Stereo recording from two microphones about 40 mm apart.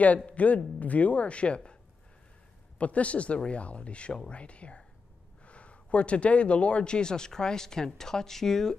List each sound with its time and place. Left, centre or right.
0.3 s speech: left
2.8 s speech: left; by 8.7 s centre